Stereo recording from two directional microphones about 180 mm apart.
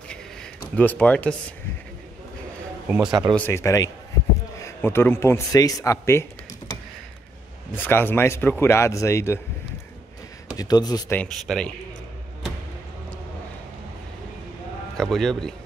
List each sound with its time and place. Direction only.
0.7 s speech: 10° left (ahead or behind)
3.1 s speech: 25° right (ahead or behind)
3.3 s speech: 15° left (ahead or behind)
7.7 s speech: 10° left (ahead or behind)
10.6 s speech: 20° left (ahead or behind)
11.1 s speech: centre (ahead or behind)
15.0 s a man's voice: centre (ahead or behind)